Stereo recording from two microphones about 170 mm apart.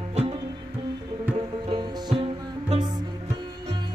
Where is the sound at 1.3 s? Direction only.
25° right (ahead or behind).